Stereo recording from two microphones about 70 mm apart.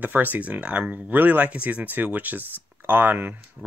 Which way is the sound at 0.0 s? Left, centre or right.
Right.